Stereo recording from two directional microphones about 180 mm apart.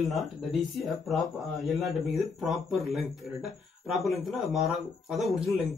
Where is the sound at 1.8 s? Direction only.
Centre (ahead or behind).